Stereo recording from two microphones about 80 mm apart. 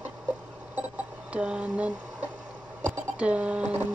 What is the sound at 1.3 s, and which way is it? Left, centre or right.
Speech, centre.